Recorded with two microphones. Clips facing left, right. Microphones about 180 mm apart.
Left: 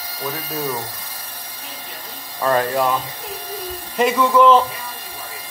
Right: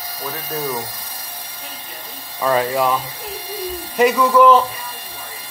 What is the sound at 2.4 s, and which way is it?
Speech, 5° right (ahead or behind).